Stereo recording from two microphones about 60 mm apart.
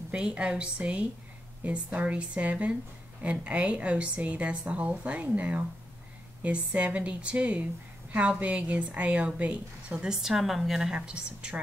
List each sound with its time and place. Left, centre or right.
0.1 s a woman's voice: centre
11.0 s speech: centre